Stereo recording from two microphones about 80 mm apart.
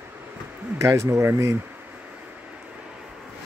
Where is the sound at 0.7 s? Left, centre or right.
Right.